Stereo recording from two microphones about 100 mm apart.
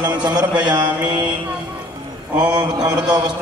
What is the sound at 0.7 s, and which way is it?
Mantra, 45° right (ahead or behind).